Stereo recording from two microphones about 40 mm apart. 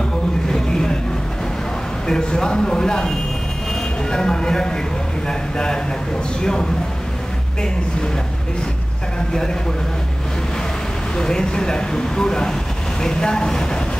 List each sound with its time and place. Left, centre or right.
0.5 s music: centre
2.0 s speech: left
4.1 s speech: centre
6.4 s speech: centre
11.1 s speech: centre